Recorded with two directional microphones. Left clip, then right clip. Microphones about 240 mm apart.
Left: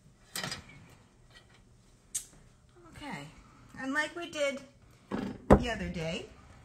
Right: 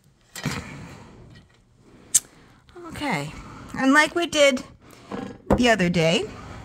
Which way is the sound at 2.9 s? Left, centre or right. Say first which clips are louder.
Right 16 dB; right.